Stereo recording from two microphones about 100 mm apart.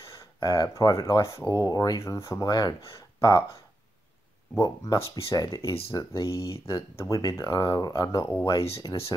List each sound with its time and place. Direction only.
0.4 s speech: 40° left (ahead or behind)
4.6 s speech: 35° left (ahead or behind)
8.7 s speech: 30° left (ahead or behind)